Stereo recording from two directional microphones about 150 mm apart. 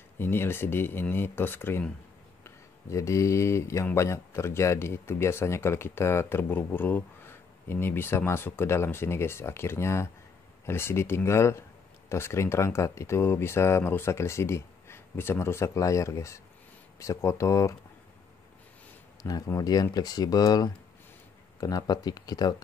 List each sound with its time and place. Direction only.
0.2 s speech: 15° left (ahead or behind)
19.2 s speech: 25° left (ahead or behind)